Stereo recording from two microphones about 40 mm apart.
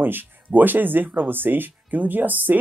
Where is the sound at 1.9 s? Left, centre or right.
Right.